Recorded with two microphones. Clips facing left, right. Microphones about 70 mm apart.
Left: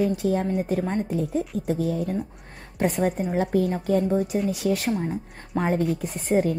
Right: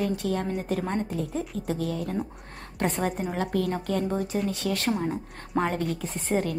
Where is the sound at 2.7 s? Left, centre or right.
Centre.